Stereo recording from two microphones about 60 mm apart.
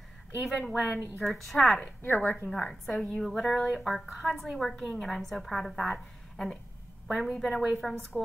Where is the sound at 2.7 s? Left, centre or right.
Centre.